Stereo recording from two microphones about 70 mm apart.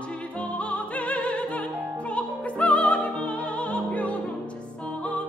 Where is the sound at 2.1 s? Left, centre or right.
Centre.